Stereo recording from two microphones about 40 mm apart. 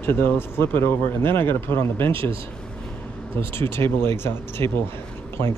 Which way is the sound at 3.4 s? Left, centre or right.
Left.